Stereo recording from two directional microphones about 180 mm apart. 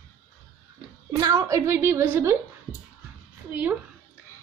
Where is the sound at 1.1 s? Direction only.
20° right (ahead or behind).